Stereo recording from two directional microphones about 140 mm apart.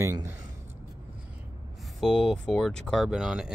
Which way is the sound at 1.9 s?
Centre (ahead or behind).